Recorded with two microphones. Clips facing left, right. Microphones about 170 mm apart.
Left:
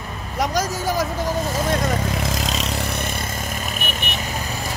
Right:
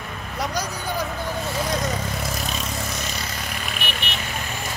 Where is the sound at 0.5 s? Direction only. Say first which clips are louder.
Left 6 dB; 90° left.